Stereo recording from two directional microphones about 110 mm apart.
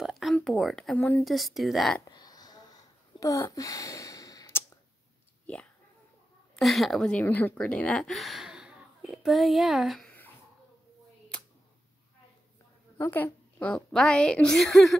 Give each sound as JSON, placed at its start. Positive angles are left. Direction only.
{"t": 0.0, "sound": "a sound", "side_deg": 0}
{"t": 0.9, "sound": "a woman's voice", "side_deg": 15}
{"t": 1.2, "sound": "speech", "side_deg": 0}
{"t": 2.0, "sound": "wheeze", "side_deg": 40}
{"t": 6.5, "sound": "speech", "side_deg": 0}
{"t": 12.9, "sound": "a woman's voice", "side_deg": 20}